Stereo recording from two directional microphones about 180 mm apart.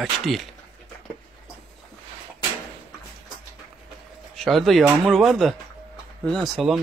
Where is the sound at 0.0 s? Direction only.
Centre (ahead or behind).